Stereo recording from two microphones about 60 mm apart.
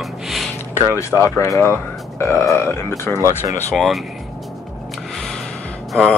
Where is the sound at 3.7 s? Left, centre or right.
Centre.